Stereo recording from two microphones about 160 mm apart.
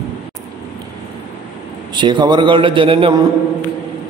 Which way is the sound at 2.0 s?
30° right (ahead or behind).